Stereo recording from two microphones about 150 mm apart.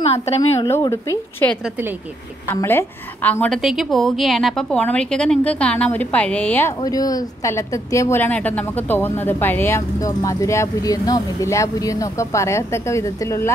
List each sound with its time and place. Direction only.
0.0 s a woman's voice: 45° left (ahead or behind)
0.7 s a woman's voice: 20° left (ahead or behind)
1.6 s a woman's voice: 15° right (ahead or behind)
2.4 s a woman's voice: 15° left (ahead or behind)
6.8 s speech: 25° left (ahead or behind)